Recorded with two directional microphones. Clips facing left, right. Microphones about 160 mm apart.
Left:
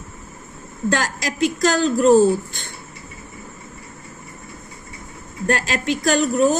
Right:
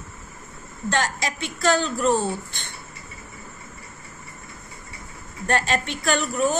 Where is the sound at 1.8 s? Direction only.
40° left (ahead or behind).